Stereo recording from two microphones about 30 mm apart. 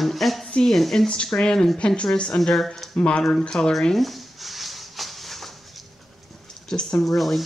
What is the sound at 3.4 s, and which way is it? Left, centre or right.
Speech, left.